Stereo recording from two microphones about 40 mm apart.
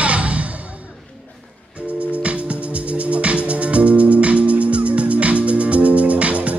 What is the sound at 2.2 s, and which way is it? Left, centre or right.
Music, right.